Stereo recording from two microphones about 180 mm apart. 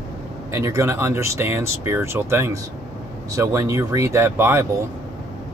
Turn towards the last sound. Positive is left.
turn(degrees=-15)  # may be behind; listen again after turning